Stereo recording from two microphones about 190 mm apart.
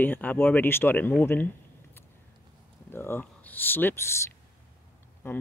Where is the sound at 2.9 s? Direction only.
10° left (ahead or behind).